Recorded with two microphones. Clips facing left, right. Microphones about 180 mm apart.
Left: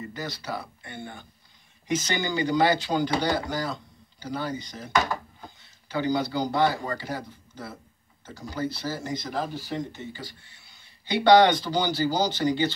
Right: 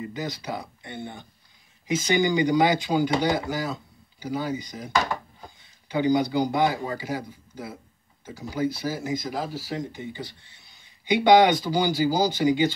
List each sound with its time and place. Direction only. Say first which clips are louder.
0.0 s speech: right 3 dB; 15° right (ahead or behind)